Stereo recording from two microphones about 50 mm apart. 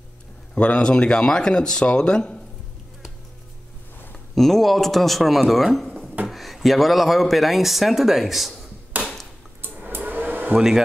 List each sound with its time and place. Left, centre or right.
0.6 s speech: left
4.4 s speech: centre
8.9 s a sound: right
9.9 s hair dryer: right
10.5 s speech: centre